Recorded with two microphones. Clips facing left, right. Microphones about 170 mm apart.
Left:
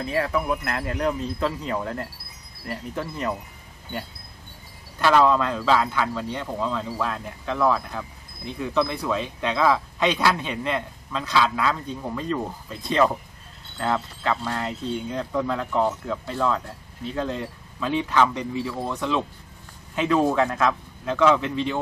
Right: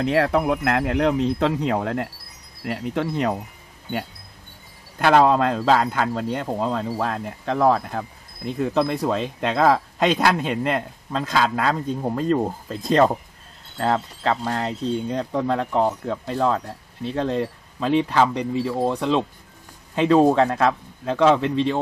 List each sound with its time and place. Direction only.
0.0 s wind chime: 75° right (ahead or behind)
4.9 s speech: 55° right (ahead or behind); by 21.7 s 30° right (ahead or behind)